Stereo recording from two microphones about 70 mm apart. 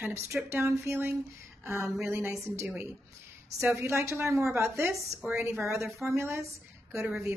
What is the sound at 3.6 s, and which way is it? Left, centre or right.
A woman's voice, right.